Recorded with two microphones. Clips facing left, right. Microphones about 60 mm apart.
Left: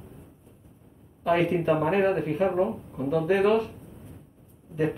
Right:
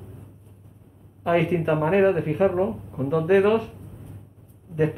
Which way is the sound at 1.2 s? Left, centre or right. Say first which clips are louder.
Right 2 dB; centre.